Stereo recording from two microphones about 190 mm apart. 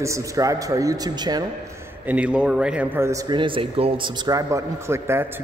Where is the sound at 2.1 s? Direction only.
5° right (ahead or behind).